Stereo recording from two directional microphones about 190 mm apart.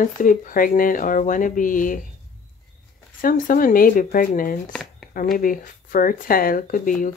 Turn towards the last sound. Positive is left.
turn(degrees=45)  # may be behind; listen again after turning